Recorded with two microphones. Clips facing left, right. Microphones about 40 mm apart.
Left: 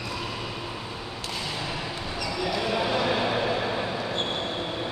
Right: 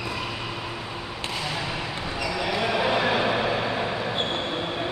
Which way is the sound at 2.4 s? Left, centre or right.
Right.